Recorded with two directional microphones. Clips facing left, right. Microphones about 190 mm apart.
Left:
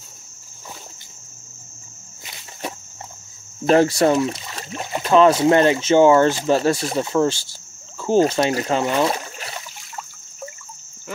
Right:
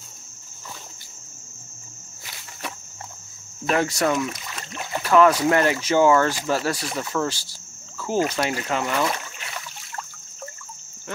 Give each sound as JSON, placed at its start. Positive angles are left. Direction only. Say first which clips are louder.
{"t": 3.6, "sound": "speech", "louder": "left 7 dB", "side_deg": 30}